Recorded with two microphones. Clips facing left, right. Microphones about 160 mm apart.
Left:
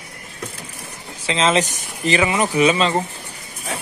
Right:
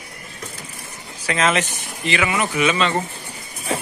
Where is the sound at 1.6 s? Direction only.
40° left (ahead or behind).